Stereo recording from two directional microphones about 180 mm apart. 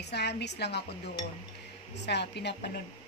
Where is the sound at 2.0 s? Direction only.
70° left (ahead or behind).